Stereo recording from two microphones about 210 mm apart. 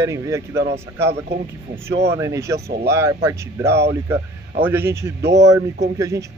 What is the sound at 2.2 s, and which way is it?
Speech, 15° right (ahead or behind).